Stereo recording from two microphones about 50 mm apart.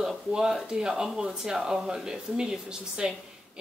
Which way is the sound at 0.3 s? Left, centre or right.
Centre.